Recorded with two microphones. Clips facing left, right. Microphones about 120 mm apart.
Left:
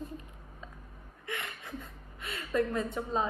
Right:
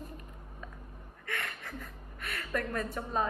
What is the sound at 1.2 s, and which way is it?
A woman's voice, 20° left (ahead or behind).